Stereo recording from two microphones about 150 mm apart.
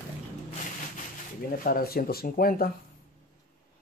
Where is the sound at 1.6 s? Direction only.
75° left (ahead or behind).